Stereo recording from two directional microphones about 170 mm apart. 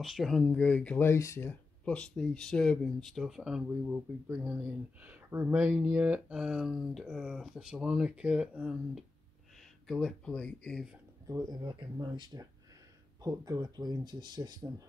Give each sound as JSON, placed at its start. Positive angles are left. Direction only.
{"t": 0.0, "sound": "speech", "side_deg": 0}
{"t": 11.2, "sound": "speech", "side_deg": -20}